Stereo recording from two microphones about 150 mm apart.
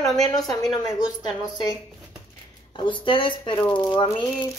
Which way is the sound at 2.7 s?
35° left (ahead or behind).